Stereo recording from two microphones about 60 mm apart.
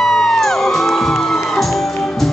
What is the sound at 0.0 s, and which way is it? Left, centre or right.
Music, centre.